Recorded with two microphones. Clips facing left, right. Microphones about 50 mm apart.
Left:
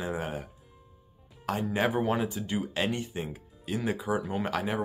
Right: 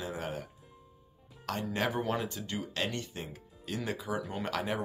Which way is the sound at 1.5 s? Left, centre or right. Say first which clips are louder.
Left 5 dB; centre.